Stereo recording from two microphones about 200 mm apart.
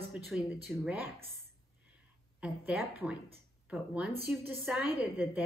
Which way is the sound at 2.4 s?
10° right (ahead or behind).